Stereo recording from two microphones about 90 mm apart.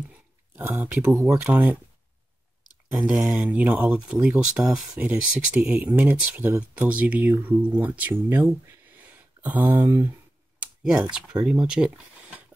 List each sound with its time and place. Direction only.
0.6 s speech: 20° right (ahead or behind)
3.0 s speech: 10° right (ahead or behind)
9.8 s speech: 40° right (ahead or behind)
10.6 s computer keyboard: 10° right (ahead or behind)
11.1 s speech: 5° right (ahead or behind)